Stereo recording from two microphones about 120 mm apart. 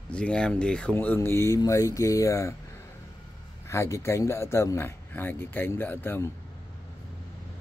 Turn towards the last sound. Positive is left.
turn(degrees=20)  # may be behind; listen again after turning